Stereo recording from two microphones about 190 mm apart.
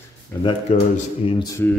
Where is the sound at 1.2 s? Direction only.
30° left (ahead or behind).